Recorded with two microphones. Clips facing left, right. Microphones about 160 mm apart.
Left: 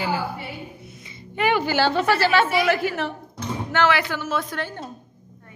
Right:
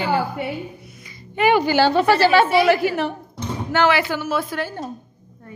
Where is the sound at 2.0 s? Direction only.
35° right (ahead or behind).